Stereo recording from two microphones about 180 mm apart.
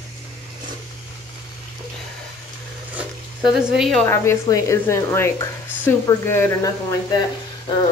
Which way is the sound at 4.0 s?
15° left (ahead or behind).